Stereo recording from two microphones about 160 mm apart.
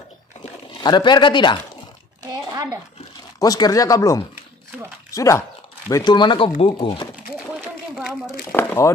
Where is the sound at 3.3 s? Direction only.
25° left (ahead or behind).